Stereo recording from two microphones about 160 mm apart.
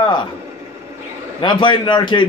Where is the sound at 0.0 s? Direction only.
30° left (ahead or behind).